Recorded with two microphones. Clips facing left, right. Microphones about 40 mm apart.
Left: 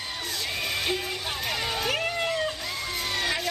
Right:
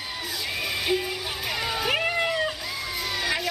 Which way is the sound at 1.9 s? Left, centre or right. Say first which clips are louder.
Right 4 dB; centre.